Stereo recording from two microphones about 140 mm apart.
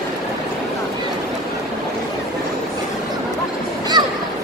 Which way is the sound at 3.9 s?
30° right (ahead or behind).